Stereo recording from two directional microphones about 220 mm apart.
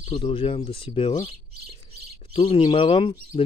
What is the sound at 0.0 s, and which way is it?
Speech, 25° left (ahead or behind).